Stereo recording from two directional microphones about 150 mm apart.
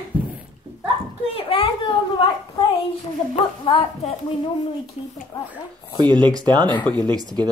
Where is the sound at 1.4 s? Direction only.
35° left (ahead or behind).